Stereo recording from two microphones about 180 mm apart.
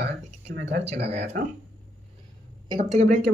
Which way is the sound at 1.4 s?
50° right (ahead or behind).